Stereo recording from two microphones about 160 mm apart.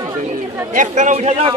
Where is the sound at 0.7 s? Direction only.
50° right (ahead or behind).